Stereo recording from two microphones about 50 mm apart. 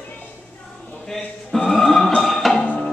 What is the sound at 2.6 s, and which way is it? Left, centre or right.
Music, left.